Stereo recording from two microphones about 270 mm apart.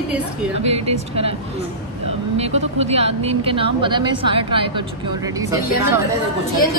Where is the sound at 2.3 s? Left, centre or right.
Right.